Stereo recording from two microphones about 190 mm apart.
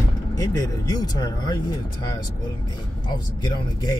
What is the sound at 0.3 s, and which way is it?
Speech, 20° left (ahead or behind).